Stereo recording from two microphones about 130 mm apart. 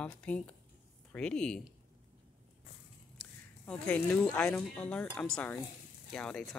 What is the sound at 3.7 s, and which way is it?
Speech, 10° left (ahead or behind).